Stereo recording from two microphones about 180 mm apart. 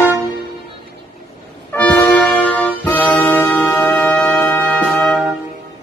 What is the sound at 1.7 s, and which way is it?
Music, 5° left (ahead or behind).